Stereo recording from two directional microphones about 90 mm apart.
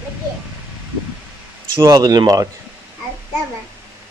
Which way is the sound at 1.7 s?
55° right (ahead or behind).